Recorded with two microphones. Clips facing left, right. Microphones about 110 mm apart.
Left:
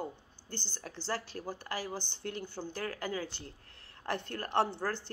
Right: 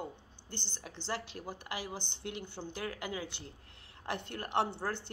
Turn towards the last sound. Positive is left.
turn(degrees=-20)  # may be behind; listen again after turning